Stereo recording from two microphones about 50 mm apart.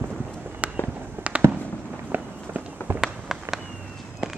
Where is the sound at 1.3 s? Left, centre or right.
Right.